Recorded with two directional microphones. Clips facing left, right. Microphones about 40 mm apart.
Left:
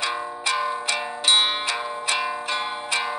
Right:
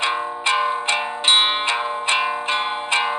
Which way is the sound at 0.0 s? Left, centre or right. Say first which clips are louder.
Right 5 dB; right.